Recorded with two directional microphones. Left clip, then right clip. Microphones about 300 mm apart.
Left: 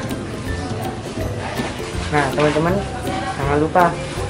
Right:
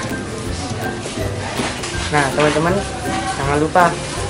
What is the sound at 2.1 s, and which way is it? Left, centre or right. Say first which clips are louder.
Speech: right 2 dB; centre.